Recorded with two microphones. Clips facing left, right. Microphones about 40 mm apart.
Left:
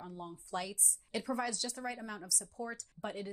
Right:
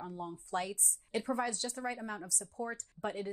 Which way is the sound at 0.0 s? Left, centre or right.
Right.